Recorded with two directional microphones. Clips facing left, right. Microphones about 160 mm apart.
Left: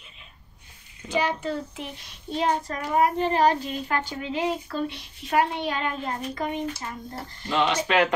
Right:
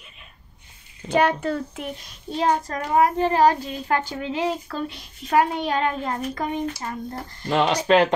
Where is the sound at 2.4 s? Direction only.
40° right (ahead or behind).